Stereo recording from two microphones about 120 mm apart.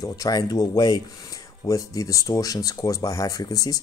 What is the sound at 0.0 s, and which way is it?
Speech, 30° left (ahead or behind).